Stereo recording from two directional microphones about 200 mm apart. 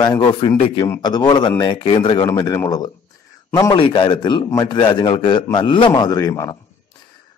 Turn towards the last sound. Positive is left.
turn(degrees=15)  # may be behind; listen again after turning